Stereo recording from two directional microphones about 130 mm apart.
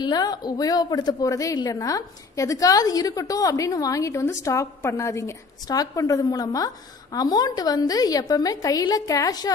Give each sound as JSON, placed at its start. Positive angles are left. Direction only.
{"t": 0.0, "sound": "a woman's voice", "side_deg": 30}